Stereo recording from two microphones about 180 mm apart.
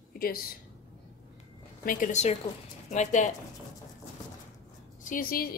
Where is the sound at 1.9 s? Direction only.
45° left (ahead or behind).